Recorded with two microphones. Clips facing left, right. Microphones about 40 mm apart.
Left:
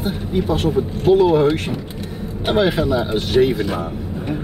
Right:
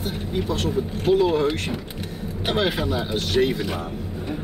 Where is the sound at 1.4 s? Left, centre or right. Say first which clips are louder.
Left 6 dB; centre.